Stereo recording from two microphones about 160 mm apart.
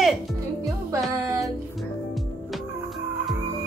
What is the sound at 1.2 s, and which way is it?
Music, 20° right (ahead or behind).